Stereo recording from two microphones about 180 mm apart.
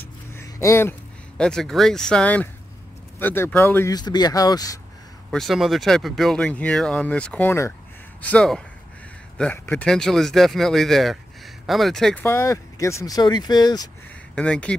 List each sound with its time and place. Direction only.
0.0 s a sound: 15° left (ahead or behind)
1.4 s speech: 5° left (ahead or behind); by 4.7 s 20° left (ahead or behind)
5.3 s speech: centre (ahead or behind)
12.3 s speech: 15° left (ahead or behind)
14.3 s speech: 5° left (ahead or behind)